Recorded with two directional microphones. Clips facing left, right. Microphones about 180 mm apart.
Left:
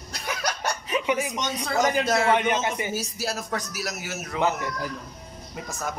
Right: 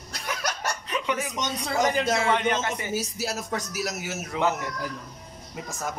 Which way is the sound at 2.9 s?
20° right (ahead or behind).